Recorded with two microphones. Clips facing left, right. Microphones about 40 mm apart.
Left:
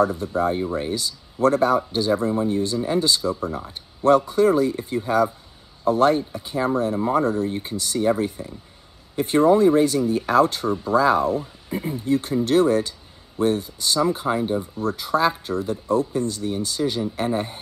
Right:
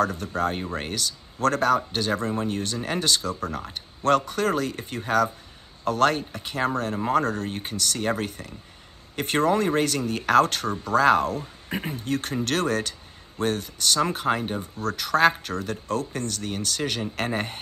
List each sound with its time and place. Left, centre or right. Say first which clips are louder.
0.0 s speech: left 4 dB; right
0.6 s speech: left 5 dB; right
7.7 s speech: left 5 dB; right
17.3 s speech: left 4 dB; right